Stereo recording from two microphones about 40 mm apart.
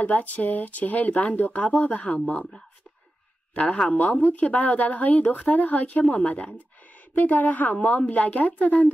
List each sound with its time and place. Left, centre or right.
0.0 s speech: left
3.5 s speech: left